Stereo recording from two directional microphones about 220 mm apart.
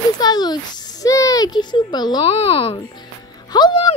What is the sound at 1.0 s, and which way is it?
A woman's voice, 15° left (ahead or behind).